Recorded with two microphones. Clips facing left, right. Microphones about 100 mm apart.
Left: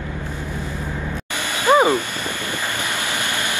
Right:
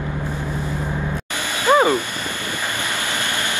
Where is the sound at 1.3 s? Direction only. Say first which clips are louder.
Left 1 dB; 15° left (ahead or behind).